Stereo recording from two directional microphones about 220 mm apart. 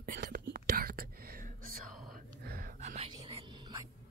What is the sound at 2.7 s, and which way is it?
Whispering, 30° right (ahead or behind).